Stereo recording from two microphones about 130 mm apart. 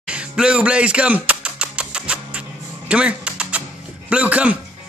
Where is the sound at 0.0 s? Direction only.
10° right (ahead or behind).